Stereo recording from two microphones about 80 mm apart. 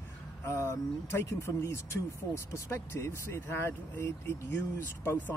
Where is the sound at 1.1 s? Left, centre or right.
Left.